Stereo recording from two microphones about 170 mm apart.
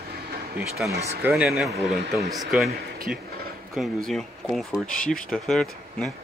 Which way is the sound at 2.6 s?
60° right (ahead or behind).